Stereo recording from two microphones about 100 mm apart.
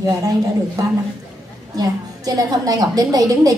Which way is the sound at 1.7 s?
40° right (ahead or behind).